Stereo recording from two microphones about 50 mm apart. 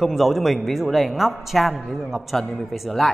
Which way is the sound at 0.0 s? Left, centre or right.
Centre.